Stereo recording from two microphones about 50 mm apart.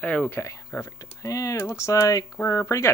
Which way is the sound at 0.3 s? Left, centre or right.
Left.